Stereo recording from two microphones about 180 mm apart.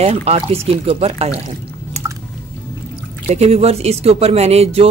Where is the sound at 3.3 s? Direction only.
35° right (ahead or behind).